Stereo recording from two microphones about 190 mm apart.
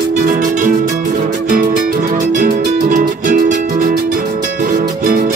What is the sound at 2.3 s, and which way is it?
Music, 40° right (ahead or behind).